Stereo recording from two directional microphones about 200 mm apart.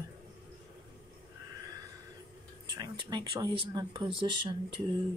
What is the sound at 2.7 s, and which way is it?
Speech, 20° right (ahead or behind).